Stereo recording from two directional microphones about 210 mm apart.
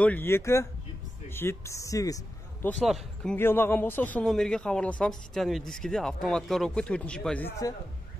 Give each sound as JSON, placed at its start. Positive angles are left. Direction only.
{"t": 0.0, "sound": "a man's voice", "side_deg": 10}
{"t": 2.7, "sound": "a man's voice", "side_deg": 0}